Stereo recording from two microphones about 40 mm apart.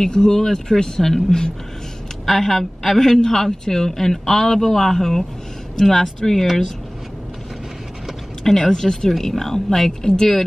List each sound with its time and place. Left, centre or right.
0.0 s a woman's voice: centre
8.5 s a woman's voice: centre